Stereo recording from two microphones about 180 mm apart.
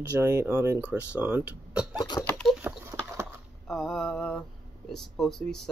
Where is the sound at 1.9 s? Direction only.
20° left (ahead or behind).